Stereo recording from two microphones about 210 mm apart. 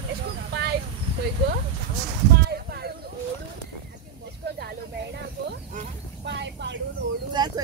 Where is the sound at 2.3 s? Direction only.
50° right (ahead or behind).